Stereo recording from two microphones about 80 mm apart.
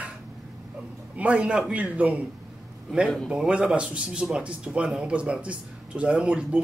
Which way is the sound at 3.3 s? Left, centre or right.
Centre.